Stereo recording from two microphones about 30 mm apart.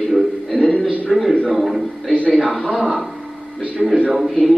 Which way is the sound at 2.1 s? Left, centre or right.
Left.